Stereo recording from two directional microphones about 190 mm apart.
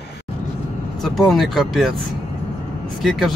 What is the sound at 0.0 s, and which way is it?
Vehicle, 60° left (ahead or behind).